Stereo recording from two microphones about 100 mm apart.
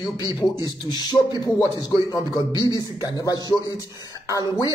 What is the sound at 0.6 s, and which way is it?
Speech, 45° left (ahead or behind).